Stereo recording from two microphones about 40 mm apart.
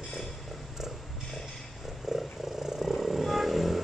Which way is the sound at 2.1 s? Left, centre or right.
Centre.